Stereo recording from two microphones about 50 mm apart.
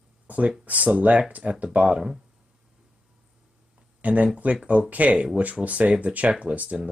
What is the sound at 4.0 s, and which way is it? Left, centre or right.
Speech, right.